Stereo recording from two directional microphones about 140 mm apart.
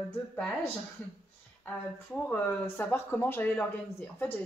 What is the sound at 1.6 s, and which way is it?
Speech, 10° left (ahead or behind).